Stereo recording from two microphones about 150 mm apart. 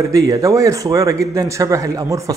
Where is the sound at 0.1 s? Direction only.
20° right (ahead or behind).